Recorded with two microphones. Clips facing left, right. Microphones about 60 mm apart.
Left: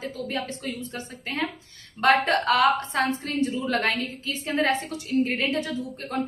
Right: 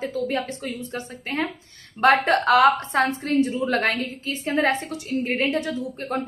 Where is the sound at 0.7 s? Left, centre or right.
Right.